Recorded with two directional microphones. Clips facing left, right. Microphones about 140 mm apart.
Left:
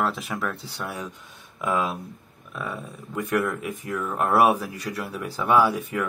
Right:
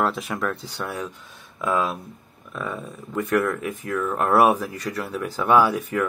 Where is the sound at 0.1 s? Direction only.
5° left (ahead or behind).